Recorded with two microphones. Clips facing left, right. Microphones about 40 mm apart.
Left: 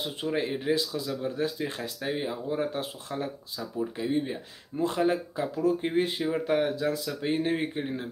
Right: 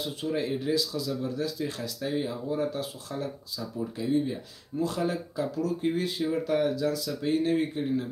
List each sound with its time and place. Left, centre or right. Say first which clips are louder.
0.0 s speech: left 1 dB; left